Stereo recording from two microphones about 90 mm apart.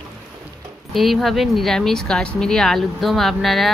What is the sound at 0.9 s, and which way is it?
Speech, centre (ahead or behind).